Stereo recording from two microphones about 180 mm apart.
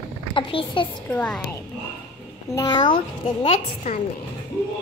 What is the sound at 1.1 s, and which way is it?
Speech, 5° left (ahead or behind).